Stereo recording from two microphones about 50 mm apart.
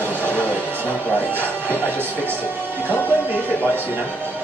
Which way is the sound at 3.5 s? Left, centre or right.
Left.